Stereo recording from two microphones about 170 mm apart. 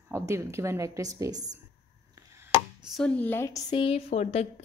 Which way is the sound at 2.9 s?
5° left (ahead or behind).